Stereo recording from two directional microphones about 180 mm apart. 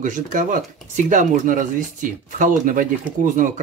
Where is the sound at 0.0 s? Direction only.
45° right (ahead or behind).